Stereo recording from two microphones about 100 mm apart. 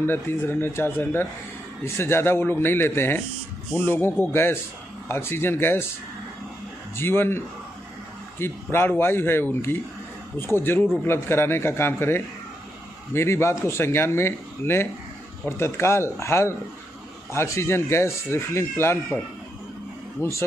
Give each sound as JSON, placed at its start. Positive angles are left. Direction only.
{"t": 0.0, "sound": "speech", "side_deg": 25}
{"t": 7.0, "sound": "speech", "side_deg": 25}
{"t": 20.2, "sound": "speech", "side_deg": 30}